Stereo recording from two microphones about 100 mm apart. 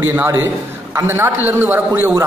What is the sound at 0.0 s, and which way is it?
A man's voice, 20° right (ahead or behind).